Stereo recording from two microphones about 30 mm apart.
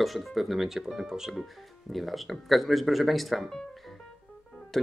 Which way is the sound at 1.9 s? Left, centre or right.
Centre.